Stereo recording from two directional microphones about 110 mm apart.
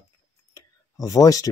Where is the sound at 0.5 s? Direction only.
30° left (ahead or behind).